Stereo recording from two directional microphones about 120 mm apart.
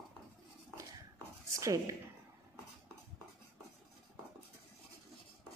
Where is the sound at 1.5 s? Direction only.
25° right (ahead or behind).